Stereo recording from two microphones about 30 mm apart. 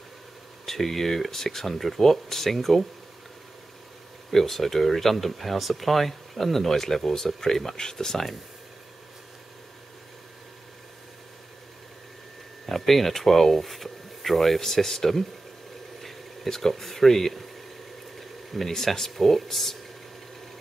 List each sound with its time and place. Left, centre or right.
0.7 s speech: centre
4.3 s speech: centre
12.6 s speech: centre
16.4 s speech: centre
18.5 s speech: centre
18.9 s speech: centre